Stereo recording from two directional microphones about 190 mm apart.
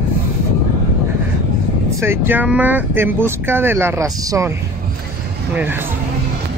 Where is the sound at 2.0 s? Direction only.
10° right (ahead or behind).